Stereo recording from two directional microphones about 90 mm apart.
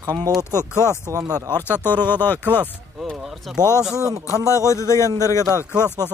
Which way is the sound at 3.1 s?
5° right (ahead or behind).